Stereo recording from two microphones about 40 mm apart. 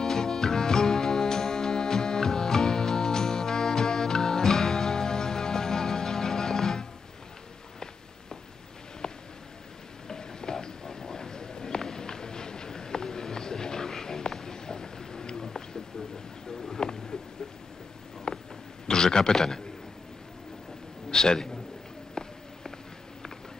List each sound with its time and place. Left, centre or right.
0.0 s music: centre
9.0 s a sound: centre
18.3 s a sound: centre
18.9 s a man's voice: centre
21.1 s a man's voice: centre
22.2 s walk: centre